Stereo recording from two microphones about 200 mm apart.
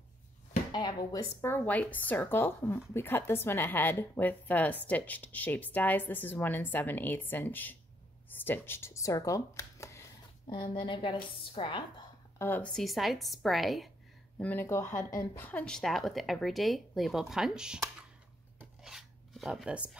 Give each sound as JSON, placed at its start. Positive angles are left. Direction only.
{"t": 0.7, "sound": "a woman's voice", "side_deg": 20}
{"t": 12.4, "sound": "speech", "side_deg": 10}
{"t": 18.6, "sound": "filing", "side_deg": 0}